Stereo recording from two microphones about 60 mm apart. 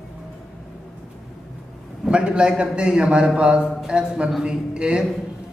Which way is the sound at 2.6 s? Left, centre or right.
Centre.